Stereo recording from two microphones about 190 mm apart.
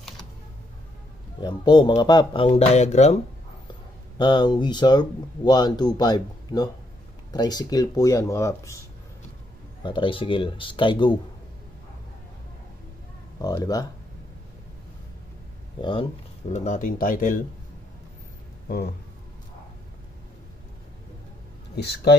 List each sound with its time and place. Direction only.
1.4 s speech: 25° left (ahead or behind)
4.2 s speech: 25° left (ahead or behind)
9.8 s speech: 25° left (ahead or behind)
13.4 s speech: 20° left (ahead or behind)
15.8 s speech: 25° left (ahead or behind); by 17.4 s 45° left (ahead or behind)